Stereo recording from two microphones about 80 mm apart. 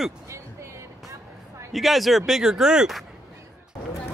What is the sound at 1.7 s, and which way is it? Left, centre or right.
Speech, centre.